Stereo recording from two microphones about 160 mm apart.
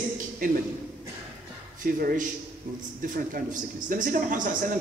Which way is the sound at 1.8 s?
60° right (ahead or behind).